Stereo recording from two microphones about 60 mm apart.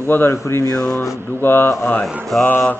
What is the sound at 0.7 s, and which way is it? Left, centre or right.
Speech, centre.